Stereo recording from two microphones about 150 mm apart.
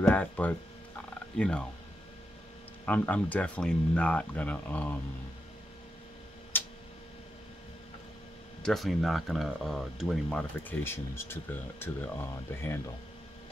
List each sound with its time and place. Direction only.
0.0 s speech: 10° left (ahead or behind)
2.8 s speech: 10° left (ahead or behind)
6.5 s tick-tock: 15° left (ahead or behind)
8.6 s speech: centre (ahead or behind)
10.7 s speech: 15° left (ahead or behind)